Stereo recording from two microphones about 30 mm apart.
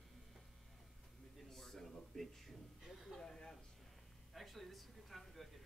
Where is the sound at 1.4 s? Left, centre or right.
Centre.